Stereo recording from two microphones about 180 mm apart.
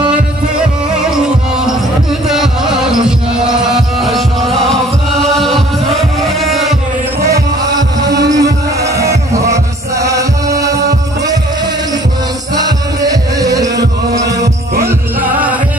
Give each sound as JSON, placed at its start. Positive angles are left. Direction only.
{"t": 2.2, "sound": "music", "side_deg": 0}
{"t": 5.4, "sound": "chant", "side_deg": 0}
{"t": 7.2, "sound": "heart murmur", "side_deg": -20}
{"t": 12.5, "sound": "music", "side_deg": -20}